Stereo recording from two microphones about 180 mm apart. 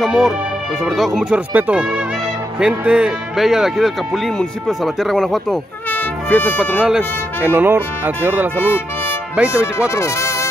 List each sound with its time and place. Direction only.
0.0 s speech: centre (ahead or behind)
5.9 s music: 10° left (ahead or behind)
6.6 s speech: 5° right (ahead or behind)
8.6 s speech: 10° left (ahead or behind)
9.3 s speech: 5° right (ahead or behind)
9.8 s speech: 15° left (ahead or behind)